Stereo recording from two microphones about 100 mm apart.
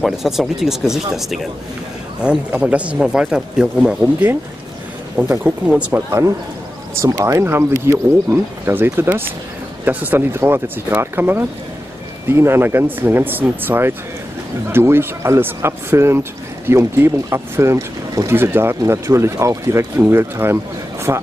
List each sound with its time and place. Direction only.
0.0 s speech: centre (ahead or behind)
5.9 s speech: 30° right (ahead or behind)